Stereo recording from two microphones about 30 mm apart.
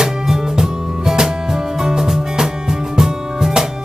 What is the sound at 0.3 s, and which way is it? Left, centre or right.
Music, centre.